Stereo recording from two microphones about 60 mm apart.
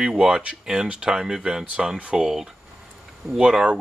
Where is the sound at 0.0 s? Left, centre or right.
Centre.